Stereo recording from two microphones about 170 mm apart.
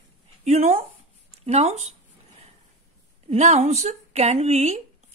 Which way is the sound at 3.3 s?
40° right (ahead or behind).